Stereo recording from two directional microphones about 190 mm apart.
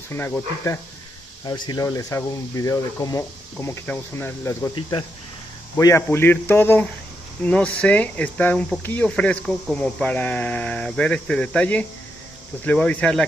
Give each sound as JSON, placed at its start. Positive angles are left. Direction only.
{"t": 0.1, "sound": "speech", "side_deg": 10}
{"t": 1.4, "sound": "speech", "side_deg": 25}